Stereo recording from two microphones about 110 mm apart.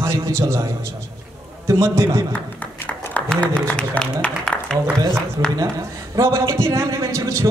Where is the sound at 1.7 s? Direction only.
25° right (ahead or behind).